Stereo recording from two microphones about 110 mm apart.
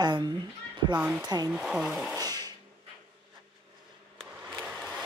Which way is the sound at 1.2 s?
40° right (ahead or behind).